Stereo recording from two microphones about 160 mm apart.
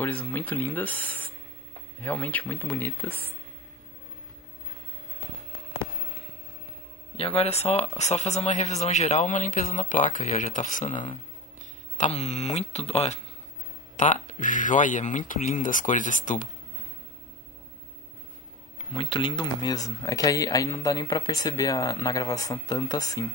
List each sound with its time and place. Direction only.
0.0 s speech: 10° left (ahead or behind)
7.2 s speech: 40° left (ahead or behind)
13.9 s speech: 50° left (ahead or behind)
18.9 s speech: 30° left (ahead or behind)